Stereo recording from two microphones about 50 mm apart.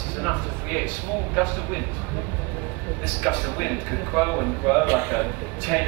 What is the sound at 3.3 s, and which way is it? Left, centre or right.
Speech, left.